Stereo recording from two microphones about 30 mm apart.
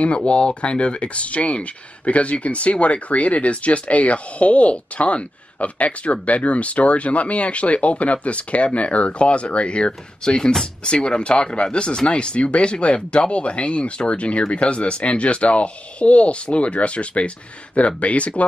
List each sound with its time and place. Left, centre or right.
0.2 s speech: left